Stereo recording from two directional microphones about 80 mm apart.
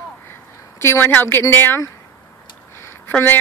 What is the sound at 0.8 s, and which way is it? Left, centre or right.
Speech, left.